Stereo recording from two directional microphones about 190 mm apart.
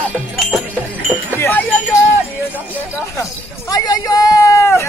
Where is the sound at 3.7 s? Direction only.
20° left (ahead or behind).